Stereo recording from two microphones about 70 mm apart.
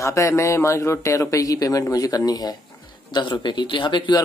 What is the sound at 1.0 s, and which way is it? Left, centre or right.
Speech, left.